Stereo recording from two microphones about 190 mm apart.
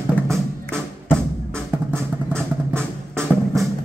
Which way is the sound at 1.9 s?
5° left (ahead or behind).